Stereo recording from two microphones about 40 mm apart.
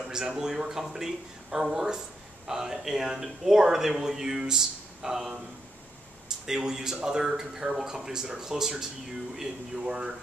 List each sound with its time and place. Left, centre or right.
0.1 s speech: centre
6.4 s speech: centre